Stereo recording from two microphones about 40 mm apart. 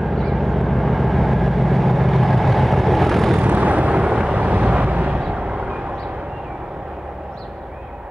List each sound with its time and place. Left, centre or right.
0.0 s vehicle: centre
3.3 s vehicle: right
3.9 s vehicle: right